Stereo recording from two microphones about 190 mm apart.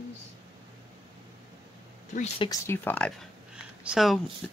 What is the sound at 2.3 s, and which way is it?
Speech, 20° left (ahead or behind).